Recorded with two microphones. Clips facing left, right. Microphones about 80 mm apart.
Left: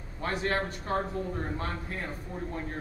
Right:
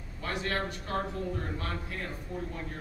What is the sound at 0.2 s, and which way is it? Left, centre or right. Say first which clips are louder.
A man's voice: left 3 dB; left.